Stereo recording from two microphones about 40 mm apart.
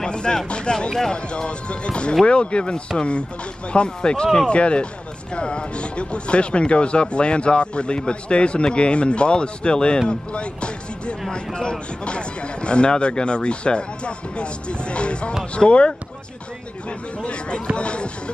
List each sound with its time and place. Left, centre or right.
0.0 s speech: left
17.2 s speech: left